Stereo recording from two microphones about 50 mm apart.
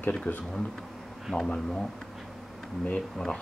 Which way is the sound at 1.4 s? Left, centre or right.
Centre.